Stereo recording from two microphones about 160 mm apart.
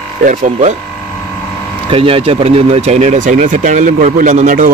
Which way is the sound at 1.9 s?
35° right (ahead or behind).